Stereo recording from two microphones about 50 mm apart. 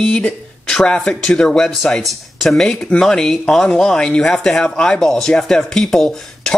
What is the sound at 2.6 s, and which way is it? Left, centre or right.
Speech, centre.